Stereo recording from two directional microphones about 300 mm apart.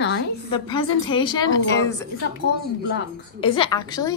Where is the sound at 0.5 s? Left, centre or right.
Centre.